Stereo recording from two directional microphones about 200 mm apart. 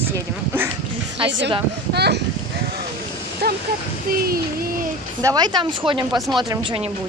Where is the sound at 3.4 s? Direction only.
50° right (ahead or behind).